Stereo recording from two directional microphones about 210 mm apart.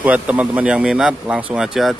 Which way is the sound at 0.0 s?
5° right (ahead or behind).